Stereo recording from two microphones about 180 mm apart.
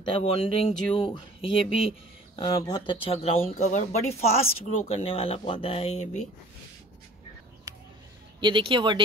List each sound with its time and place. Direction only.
0.2 s speech: 35° left (ahead or behind)
8.4 s speech: 25° right (ahead or behind)